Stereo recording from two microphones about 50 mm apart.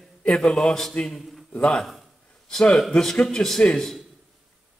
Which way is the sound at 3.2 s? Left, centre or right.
Centre.